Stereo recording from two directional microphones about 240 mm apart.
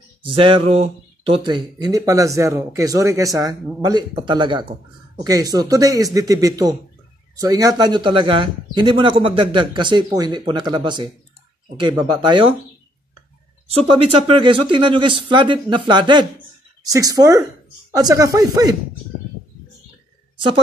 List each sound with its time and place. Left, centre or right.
0.2 s speech: right
13.7 s speech: right